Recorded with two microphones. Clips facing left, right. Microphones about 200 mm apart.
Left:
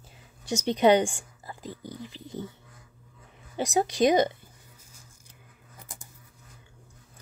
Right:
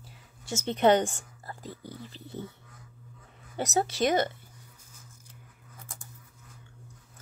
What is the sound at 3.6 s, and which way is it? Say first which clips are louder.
Speech: left 4 dB; 15° left (ahead or behind).